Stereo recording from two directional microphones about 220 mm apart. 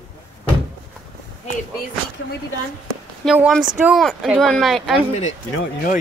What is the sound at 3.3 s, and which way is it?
Speech, 5° right (ahead or behind).